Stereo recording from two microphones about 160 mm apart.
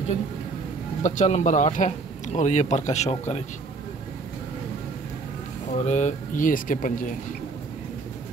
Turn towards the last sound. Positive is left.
turn(degrees=55)  # may be behind; listen again after turning